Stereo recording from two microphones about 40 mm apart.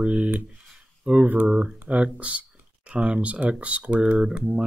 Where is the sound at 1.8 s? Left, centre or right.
Right.